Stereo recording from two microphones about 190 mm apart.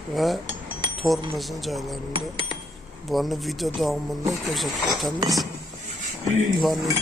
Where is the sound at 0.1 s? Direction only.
Centre (ahead or behind).